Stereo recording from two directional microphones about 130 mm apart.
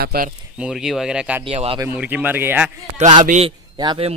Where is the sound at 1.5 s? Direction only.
45° right (ahead or behind).